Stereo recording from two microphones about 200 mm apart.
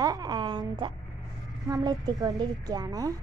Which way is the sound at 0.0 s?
20° right (ahead or behind).